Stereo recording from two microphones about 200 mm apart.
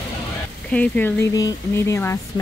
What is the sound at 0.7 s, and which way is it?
Speech, 5° left (ahead or behind).